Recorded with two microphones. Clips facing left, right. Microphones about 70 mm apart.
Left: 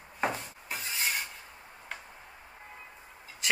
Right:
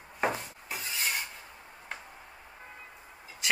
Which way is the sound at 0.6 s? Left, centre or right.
Left.